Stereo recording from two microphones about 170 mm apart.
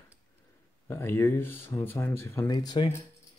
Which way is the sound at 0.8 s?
15° left (ahead or behind).